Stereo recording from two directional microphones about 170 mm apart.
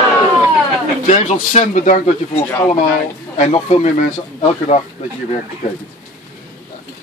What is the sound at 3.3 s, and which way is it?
Speech, 40° left (ahead or behind).